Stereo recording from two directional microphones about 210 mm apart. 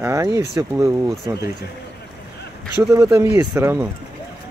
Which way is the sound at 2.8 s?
5° right (ahead or behind).